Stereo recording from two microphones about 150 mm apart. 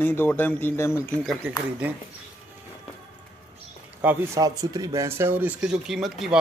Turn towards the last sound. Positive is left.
turn(degrees=0)  # may be behind; listen again after turning